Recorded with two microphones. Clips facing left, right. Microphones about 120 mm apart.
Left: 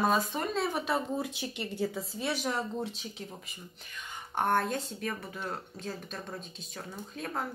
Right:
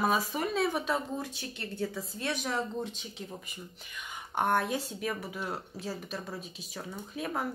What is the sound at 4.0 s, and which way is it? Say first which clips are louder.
Speech: right 1 dB; 10° right (ahead or behind).